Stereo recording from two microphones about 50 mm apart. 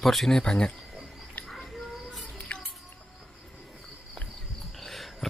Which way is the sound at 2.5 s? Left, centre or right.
Left.